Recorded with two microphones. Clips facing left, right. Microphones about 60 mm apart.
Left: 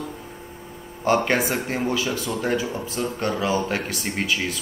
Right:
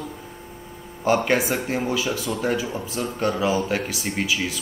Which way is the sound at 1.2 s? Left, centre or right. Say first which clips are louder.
Right 1 dB; centre.